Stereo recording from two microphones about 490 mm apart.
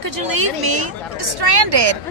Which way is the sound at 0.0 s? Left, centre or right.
Right.